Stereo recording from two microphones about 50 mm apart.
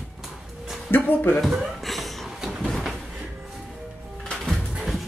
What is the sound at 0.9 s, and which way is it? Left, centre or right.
Speech, left.